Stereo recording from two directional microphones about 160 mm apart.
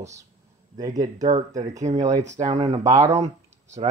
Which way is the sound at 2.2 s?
45° right (ahead or behind).